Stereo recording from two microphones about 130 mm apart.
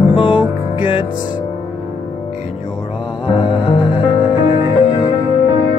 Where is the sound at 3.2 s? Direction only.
40° left (ahead or behind).